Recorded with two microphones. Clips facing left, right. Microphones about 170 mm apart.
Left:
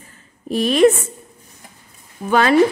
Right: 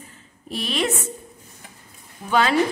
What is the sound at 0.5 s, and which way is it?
Speech, 45° left (ahead or behind).